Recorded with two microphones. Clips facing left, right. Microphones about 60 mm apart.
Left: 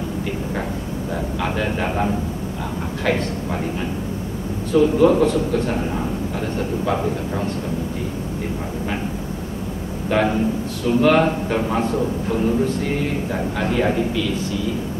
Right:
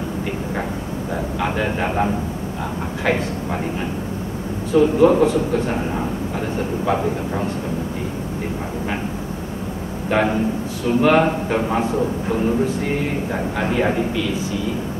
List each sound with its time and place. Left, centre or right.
1.4 s a man's voice: centre
4.7 s a man's voice: centre
6.9 s a man's voice: centre
10.0 s a man's voice: centre
13.3 s a man's voice: centre